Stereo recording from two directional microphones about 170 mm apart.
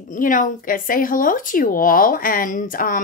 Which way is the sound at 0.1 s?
50° left (ahead or behind).